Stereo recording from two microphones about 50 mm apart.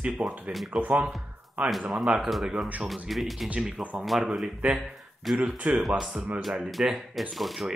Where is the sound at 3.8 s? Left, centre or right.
Right.